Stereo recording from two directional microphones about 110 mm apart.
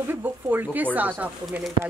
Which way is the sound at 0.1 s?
15° right (ahead or behind).